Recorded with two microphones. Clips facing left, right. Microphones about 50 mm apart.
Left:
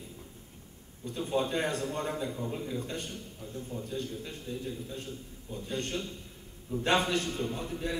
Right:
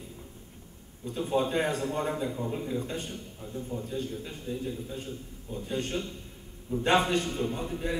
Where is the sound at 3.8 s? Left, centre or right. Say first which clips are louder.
Right 2 dB; right.